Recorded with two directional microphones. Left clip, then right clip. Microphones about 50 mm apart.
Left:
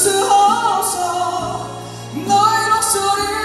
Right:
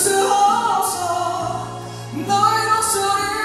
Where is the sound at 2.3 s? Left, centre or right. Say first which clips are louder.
Left 3 dB; left.